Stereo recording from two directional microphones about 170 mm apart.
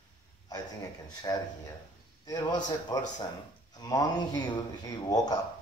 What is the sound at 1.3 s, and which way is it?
A man's voice, 20° left (ahead or behind).